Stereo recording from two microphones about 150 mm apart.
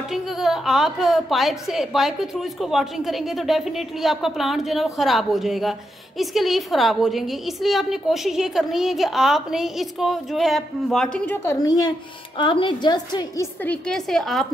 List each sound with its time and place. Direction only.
0.1 s a woman's voice: centre (ahead or behind)
11.6 s a woman's voice: 25° left (ahead or behind)
13.6 s a woman's voice: 10° left (ahead or behind)